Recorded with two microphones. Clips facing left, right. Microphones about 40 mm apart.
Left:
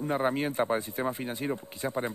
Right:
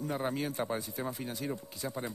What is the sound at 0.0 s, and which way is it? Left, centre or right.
Speech, left.